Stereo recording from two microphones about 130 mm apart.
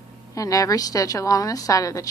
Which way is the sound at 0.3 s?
25° left (ahead or behind).